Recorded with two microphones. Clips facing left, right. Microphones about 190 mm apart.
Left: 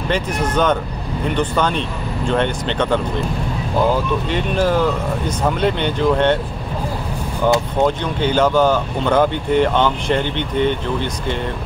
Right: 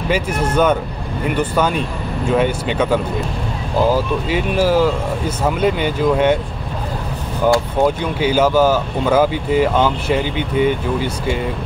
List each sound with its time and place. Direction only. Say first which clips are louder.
0.1 s speech: right 2 dB; 10° right (ahead or behind)
7.8 s speech: right 1 dB; 10° right (ahead or behind)